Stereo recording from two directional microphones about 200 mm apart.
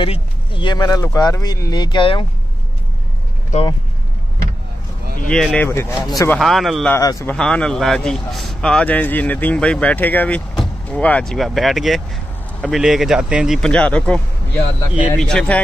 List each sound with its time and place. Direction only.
0.0 s speech: 25° left (ahead or behind)
3.5 s speech: 35° left (ahead or behind)
5.3 s speech: 5° left (ahead or behind)
6.3 s speech: centre (ahead or behind)
7.0 s speech: 15° left (ahead or behind)
7.3 s speech: 5° left (ahead or behind)